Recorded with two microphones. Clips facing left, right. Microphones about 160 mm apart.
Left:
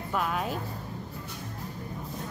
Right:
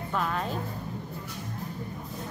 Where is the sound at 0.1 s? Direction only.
5° left (ahead or behind).